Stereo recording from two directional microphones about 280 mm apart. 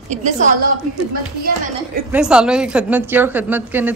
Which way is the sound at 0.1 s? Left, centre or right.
Right.